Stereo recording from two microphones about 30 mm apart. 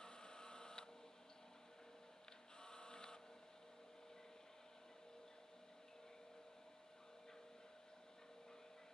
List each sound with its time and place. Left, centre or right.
0.0 s printer: left
2.6 s printer: left